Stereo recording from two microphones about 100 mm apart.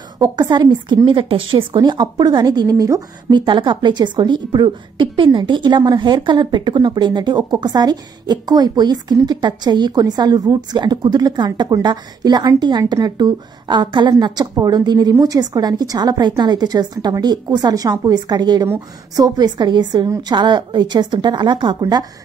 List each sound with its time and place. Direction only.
0.2 s a woman's voice: 45° right (ahead or behind)
1.8 s a woman's voice: 45° right (ahead or behind)
3.3 s a woman's voice: 55° right (ahead or behind)